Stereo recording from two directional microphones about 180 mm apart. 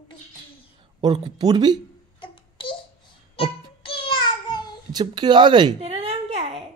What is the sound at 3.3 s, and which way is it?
Music, 30° left (ahead or behind).